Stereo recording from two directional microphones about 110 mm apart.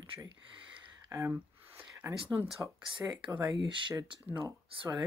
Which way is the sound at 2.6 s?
30° right (ahead or behind).